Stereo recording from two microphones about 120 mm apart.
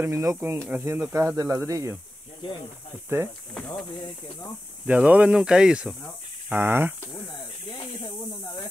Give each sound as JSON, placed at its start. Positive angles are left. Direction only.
{"t": 0.0, "sound": "speech", "side_deg": -25}
{"t": 0.7, "sound": "speech", "side_deg": -15}
{"t": 3.5, "sound": "speech", "side_deg": 5}
{"t": 4.8, "sound": "speech", "side_deg": -10}
{"t": 6.5, "sound": "speech", "side_deg": -20}